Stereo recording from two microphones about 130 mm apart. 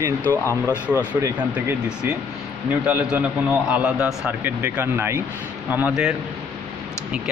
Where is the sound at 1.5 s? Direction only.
10° right (ahead or behind).